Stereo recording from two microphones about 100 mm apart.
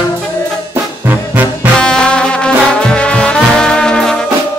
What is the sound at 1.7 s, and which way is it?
Music, 10° left (ahead or behind).